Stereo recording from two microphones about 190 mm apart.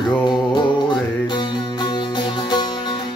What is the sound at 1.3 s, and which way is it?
Music, 20° left (ahead or behind).